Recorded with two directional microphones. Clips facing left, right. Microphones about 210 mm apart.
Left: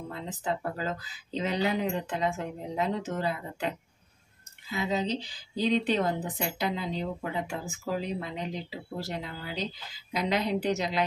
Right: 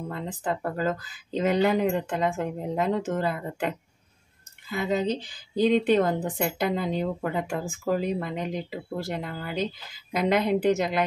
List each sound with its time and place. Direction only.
0.1 s a woman's voice: 50° right (ahead or behind)